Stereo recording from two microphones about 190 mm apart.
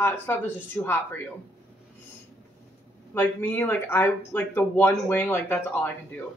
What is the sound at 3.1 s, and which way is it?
A woman's voice, 10° left (ahead or behind).